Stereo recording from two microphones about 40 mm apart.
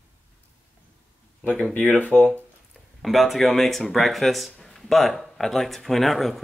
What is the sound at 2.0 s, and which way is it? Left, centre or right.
Speech, left.